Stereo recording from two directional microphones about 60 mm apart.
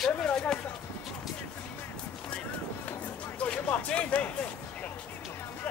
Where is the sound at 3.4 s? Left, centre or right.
Left.